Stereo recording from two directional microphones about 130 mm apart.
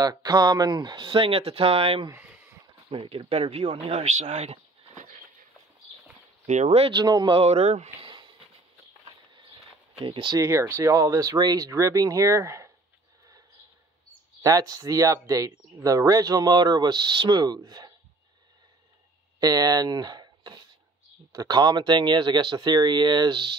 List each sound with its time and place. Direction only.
0.0 s speech: 30° right (ahead or behind); by 2.0 s 45° right (ahead or behind)
2.0 s a sound: 15° right (ahead or behind)
2.9 s speech: 45° right (ahead or behind); by 5.2 s 60° right (ahead or behind)
6.4 s speech: 65° right (ahead or behind)
6.8 s speech: 35° right (ahead or behind)
7.3 s speech: 55° right (ahead or behind)
8.1 s a sound: 35° right (ahead or behind)
9.9 s speech: 40° right (ahead or behind)
10.4 s speech: 20° right (ahead or behind)
14.4 s speech: 30° right (ahead or behind)
19.4 s speech: 30° right (ahead or behind)